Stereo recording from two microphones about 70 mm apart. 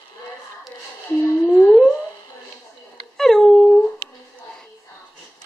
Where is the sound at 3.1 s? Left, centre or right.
Centre.